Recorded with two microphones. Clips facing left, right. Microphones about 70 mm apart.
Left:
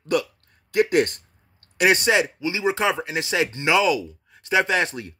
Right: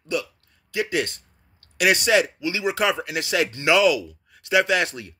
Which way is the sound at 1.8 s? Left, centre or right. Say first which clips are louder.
Even; left.